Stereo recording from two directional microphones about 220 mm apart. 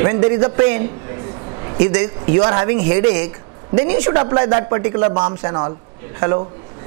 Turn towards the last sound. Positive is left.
turn(degrees=-20)  # may be behind; listen again after turning